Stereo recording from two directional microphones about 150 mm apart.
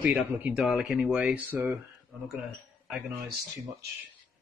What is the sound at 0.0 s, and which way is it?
Speech, 10° right (ahead or behind).